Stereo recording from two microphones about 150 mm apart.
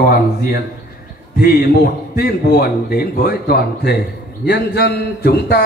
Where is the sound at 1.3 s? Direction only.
90° left.